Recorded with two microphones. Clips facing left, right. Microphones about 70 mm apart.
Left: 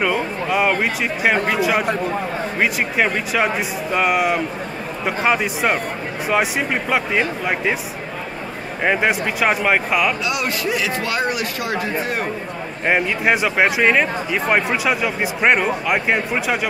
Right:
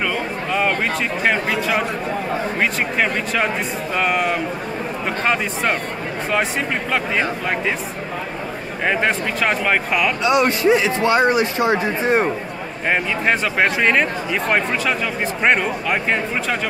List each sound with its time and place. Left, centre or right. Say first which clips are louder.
0.0 s speech: left 2 dB; centre
8.8 s speech: left 1 dB; centre
10.2 s a man's voice: right 7 dB; right
12.8 s speech: left 1 dB; centre